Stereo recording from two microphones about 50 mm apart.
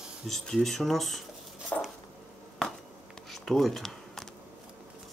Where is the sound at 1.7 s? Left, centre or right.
Left.